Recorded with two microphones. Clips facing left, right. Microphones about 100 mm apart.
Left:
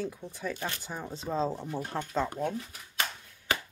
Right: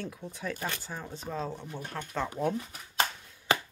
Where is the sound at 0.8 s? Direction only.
15° left (ahead or behind).